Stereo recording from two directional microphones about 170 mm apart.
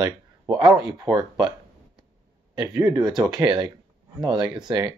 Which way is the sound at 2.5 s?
25° right (ahead or behind).